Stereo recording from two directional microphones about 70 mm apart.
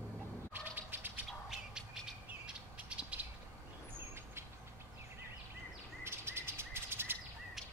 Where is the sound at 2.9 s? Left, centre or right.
Centre.